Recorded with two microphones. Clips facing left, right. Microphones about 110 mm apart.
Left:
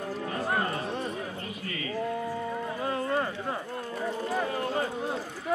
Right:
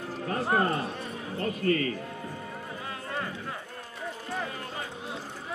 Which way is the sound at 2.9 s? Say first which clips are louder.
Left 7 dB; 35° left (ahead or behind).